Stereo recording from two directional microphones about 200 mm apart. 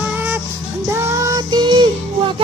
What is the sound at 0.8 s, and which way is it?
Child singing, 15° right (ahead or behind).